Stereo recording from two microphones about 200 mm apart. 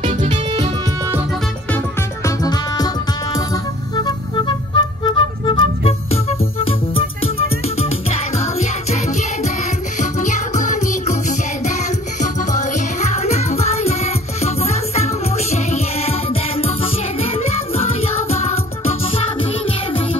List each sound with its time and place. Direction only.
0.0 s music: 40° right (ahead or behind)
2.2 s music: 20° left (ahead or behind)
3.9 s music: 20° left (ahead or behind)
9.9 s music: 40° left (ahead or behind)